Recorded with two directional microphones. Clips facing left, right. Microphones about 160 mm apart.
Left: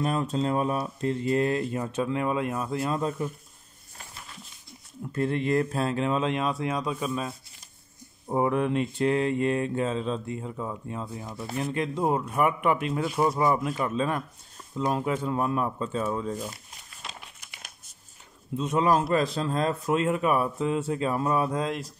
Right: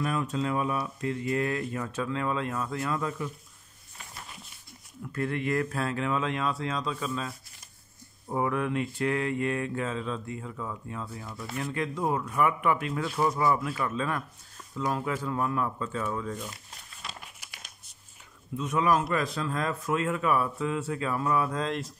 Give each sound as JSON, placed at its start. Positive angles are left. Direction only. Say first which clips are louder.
{"t": 0.0, "sound": "mantra", "louder": "left 3 dB", "side_deg": 30}
{"t": 2.8, "sound": "mantra", "louder": "left 4 dB", "side_deg": 30}
{"t": 5.1, "sound": "mantra", "louder": "left 4 dB", "side_deg": 25}
{"t": 18.6, "sound": "mantra", "louder": "left 2 dB", "side_deg": 30}
{"t": 21.5, "sound": "a sound", "louder": "left 2 dB", "side_deg": 5}